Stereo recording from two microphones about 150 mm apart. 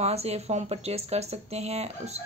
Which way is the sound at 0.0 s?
45° right (ahead or behind).